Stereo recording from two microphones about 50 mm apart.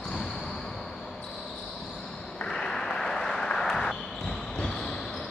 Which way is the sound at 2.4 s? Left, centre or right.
Centre.